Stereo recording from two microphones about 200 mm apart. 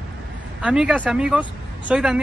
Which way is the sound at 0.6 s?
5° right (ahead or behind).